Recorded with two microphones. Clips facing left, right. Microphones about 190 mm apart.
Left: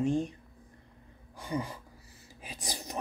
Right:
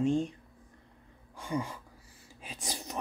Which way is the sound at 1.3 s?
40° left (ahead or behind).